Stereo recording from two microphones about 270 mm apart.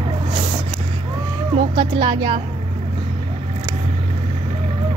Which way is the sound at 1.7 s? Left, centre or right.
Centre.